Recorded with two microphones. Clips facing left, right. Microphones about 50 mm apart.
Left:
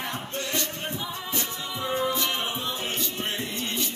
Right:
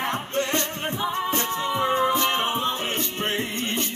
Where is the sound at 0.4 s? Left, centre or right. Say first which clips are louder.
Right 6 dB; right.